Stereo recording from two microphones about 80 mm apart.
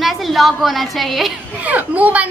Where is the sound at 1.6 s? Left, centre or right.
Centre.